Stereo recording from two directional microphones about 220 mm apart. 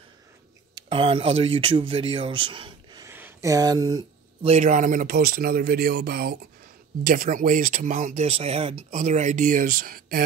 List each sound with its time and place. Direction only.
0.7 s speech: 25° right (ahead or behind)
4.5 s speech: 35° right (ahead or behind)